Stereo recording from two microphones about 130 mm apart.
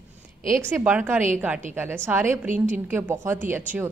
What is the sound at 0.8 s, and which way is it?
A woman's voice, 15° right (ahead or behind).